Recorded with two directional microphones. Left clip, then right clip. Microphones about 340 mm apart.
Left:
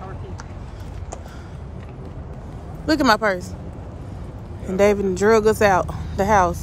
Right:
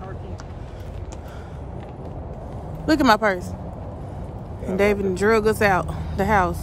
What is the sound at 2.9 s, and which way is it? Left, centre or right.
Speech, centre.